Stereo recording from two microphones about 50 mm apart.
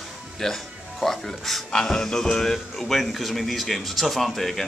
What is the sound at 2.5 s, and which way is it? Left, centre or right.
Speech, centre.